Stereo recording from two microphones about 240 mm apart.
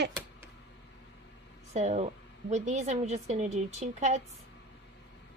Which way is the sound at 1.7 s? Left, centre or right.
Right.